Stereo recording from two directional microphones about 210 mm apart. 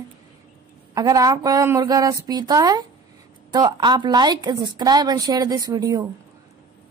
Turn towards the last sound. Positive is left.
turn(degrees=-20)  # may be behind; listen again after turning